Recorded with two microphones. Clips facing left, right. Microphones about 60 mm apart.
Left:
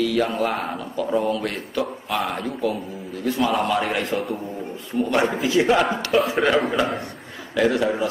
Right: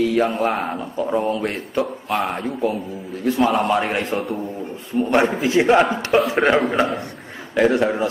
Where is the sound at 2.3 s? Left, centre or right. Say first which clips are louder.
Right 2 dB; right.